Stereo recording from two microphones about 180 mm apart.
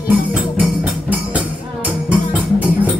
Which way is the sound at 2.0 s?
5° right (ahead or behind).